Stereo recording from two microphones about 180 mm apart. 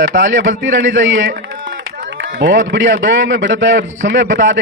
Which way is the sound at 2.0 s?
70° right (ahead or behind).